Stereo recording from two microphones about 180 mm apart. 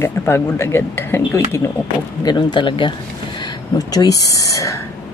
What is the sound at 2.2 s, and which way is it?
Speech, 25° left (ahead or behind).